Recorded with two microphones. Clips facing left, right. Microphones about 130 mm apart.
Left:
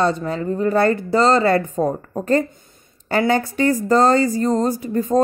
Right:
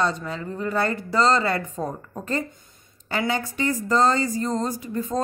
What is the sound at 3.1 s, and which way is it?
Speech, 45° left (ahead or behind).